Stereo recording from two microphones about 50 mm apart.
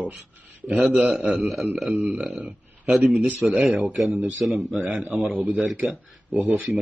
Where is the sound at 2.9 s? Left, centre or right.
Centre.